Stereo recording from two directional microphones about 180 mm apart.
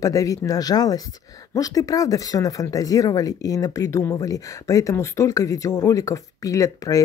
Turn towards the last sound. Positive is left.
turn(degrees=20)  # may be behind; listen again after turning